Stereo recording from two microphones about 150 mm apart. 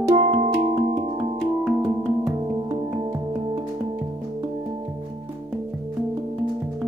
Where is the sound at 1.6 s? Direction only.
10° right (ahead or behind).